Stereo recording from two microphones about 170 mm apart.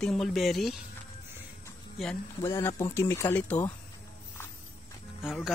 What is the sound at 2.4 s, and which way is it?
Speech, 15° left (ahead or behind).